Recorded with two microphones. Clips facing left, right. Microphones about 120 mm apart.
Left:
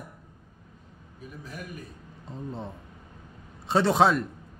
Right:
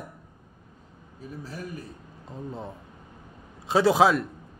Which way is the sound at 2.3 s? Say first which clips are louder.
Even; centre (ahead or behind).